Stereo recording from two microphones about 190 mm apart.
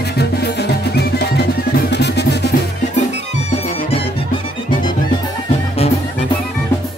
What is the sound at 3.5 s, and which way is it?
Music, 30° left (ahead or behind).